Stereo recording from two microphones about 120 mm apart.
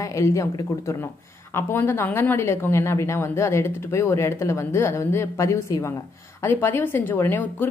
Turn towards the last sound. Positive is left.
turn(degrees=15)  # may be behind; listen again after turning